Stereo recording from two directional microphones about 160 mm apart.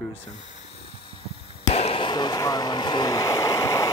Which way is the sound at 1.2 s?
40° left (ahead or behind).